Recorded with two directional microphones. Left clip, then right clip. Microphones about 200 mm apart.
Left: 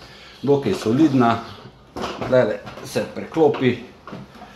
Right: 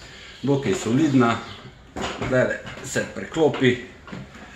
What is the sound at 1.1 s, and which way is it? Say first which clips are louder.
Speech: left 2 dB; 30° left (ahead or behind).